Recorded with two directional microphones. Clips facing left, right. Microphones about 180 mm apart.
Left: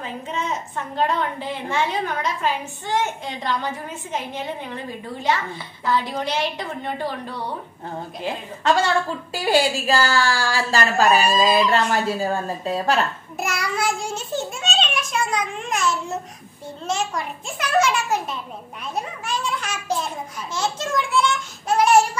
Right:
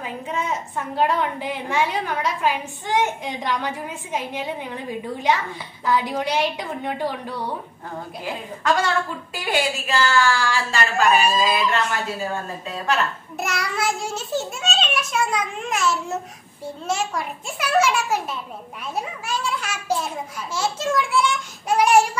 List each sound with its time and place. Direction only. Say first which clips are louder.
0.0 s a woman's voice: right 1 dB; 10° right (ahead or behind)
5.9 s a woman's voice: right 1 dB; 10° right (ahead or behind)
8.7 s a woman's voice: left 2 dB; 30° left (ahead or behind)
13.4 s a child's voice: left 1 dB; centre (ahead or behind)